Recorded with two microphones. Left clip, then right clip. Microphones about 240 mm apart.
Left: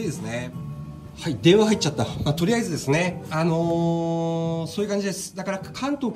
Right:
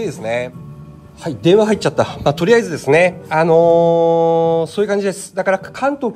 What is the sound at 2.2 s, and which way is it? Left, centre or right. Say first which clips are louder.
Speech: right 10 dB; right.